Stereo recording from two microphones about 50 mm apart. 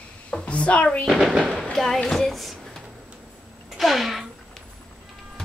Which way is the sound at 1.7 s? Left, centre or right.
Centre.